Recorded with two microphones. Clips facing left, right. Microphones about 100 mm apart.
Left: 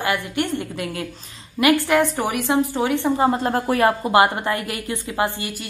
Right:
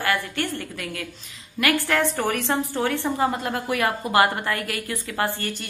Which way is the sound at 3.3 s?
35° left (ahead or behind).